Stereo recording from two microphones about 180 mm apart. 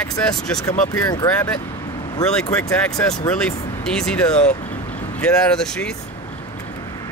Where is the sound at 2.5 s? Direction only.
5° left (ahead or behind).